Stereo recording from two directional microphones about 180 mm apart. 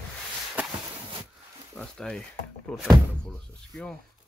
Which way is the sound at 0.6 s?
10° right (ahead or behind).